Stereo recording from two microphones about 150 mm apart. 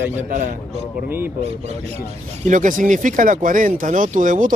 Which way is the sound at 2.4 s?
60° right (ahead or behind).